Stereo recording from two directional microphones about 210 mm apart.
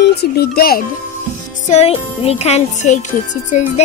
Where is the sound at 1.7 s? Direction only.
30° left (ahead or behind).